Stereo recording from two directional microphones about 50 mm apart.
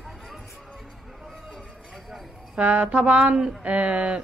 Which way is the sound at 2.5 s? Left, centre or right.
Right.